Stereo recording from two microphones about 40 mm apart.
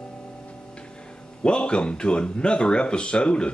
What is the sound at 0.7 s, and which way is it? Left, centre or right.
Speech, left.